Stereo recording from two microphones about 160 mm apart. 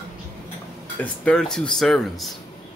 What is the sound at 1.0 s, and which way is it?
Speech, 5° left (ahead or behind).